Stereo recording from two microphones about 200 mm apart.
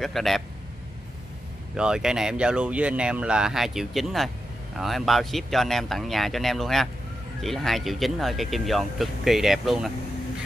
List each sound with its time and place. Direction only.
0.0 s speech: centre (ahead or behind)
1.8 s speech: 5° right (ahead or behind)